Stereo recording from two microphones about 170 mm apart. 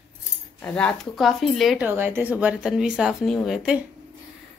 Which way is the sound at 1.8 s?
15° right (ahead or behind).